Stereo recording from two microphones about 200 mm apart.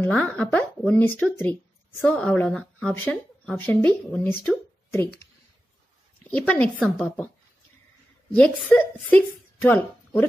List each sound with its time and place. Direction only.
0.0 s speech: 5° left (ahead or behind)
6.2 s speech: 10° left (ahead or behind)
8.3 s speech: 10° left (ahead or behind)